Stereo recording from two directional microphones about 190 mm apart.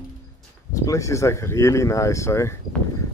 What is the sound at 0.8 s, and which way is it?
Speech, 15° left (ahead or behind).